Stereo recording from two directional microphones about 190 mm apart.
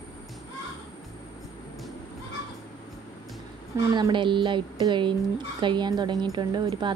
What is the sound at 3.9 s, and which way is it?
A woman's voice, 25° right (ahead or behind).